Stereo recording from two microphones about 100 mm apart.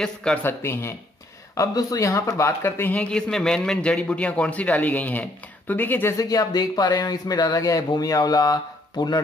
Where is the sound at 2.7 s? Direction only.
20° left (ahead or behind).